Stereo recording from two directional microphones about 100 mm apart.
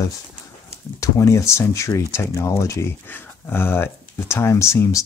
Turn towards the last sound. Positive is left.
turn(degrees=30)  # may be behind; listen again after turning